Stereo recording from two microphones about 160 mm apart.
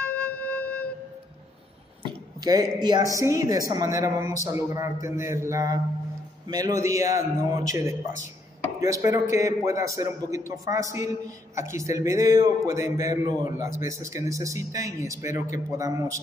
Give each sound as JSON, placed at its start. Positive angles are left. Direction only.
{"t": 0.0, "sound": "music", "side_deg": 10}
{"t": 2.0, "sound": "a sound", "side_deg": -25}
{"t": 3.2, "sound": "a man's voice", "side_deg": -20}
{"t": 8.8, "sound": "a man's voice", "side_deg": -20}